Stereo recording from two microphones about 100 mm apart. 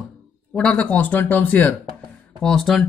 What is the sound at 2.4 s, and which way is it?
Speech, 5° left (ahead or behind).